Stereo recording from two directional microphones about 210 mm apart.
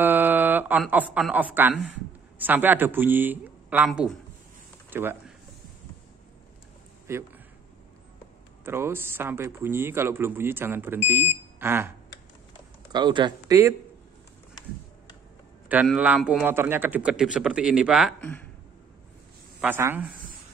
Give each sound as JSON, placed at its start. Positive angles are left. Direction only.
{"t": 0.0, "sound": "a man's voice", "side_deg": -10}
{"t": 7.1, "sound": "speech", "side_deg": -15}
{"t": 8.6, "sound": "speech", "side_deg": -10}
{"t": 12.9, "sound": "speech", "side_deg": -20}
{"t": 15.7, "sound": "a man's voice", "side_deg": -5}
{"t": 18.2, "sound": "speech", "side_deg": 5}
{"t": 19.6, "sound": "speech", "side_deg": -10}